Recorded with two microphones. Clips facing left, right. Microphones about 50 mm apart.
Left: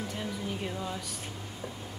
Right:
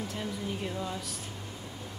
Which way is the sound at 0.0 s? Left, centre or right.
Centre.